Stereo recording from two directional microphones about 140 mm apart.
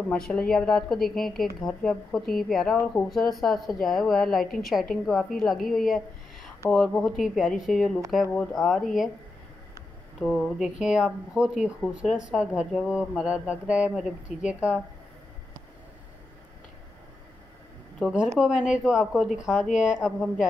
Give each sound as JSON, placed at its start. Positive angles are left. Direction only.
{"t": 0.1, "sound": "a woman's voice", "side_deg": 5}
{"t": 10.2, "sound": "a woman's voice", "side_deg": 0}
{"t": 18.0, "sound": "a woman's voice", "side_deg": -5}
{"t": 19.7, "sound": "speech", "side_deg": 60}
{"t": 20.0, "sound": "a woman's voice", "side_deg": -5}